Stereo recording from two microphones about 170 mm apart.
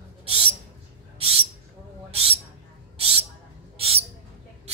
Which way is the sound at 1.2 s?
35° right (ahead or behind).